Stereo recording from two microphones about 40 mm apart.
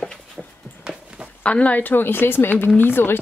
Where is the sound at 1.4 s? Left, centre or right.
Left.